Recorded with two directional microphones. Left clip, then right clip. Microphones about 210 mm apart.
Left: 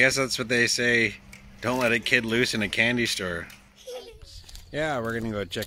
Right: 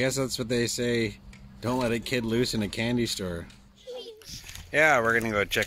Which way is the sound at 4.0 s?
15° left (ahead or behind).